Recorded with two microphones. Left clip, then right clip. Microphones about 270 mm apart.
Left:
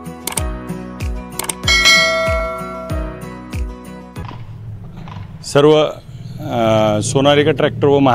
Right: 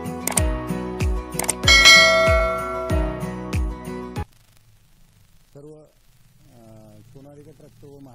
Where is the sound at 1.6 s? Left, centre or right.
Centre.